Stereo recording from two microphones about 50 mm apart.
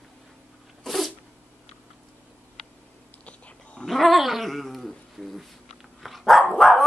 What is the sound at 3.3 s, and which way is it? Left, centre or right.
Dog, left.